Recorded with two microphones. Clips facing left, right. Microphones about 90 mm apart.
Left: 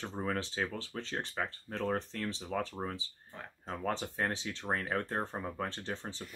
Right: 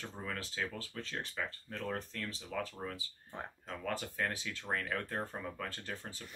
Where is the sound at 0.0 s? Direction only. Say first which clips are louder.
Left 7 dB; 35° left (ahead or behind).